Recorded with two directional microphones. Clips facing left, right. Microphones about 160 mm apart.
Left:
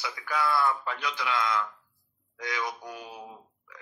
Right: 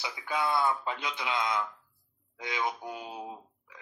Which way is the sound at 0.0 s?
20° right (ahead or behind).